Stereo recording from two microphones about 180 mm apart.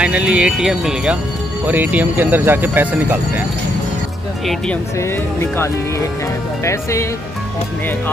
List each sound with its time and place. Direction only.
0.0 s speech: 5° right (ahead or behind)
5.4 s speech: 15° left (ahead or behind)